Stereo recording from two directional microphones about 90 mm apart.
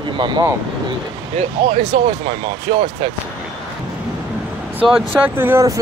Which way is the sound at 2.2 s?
80° right.